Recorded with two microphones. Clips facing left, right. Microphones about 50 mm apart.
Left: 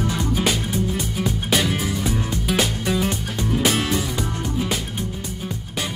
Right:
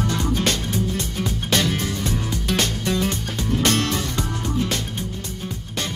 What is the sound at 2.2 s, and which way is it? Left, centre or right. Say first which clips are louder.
Music: left 1 dB; left.